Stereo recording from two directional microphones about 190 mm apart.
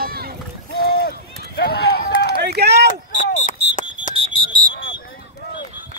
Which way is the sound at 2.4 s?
60° right (ahead or behind).